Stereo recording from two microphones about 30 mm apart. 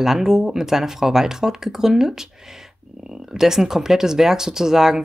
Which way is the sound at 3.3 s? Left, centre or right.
Centre.